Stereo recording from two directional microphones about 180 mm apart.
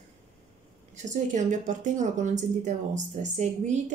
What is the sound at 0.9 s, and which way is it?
A woman's voice, 45° right (ahead or behind).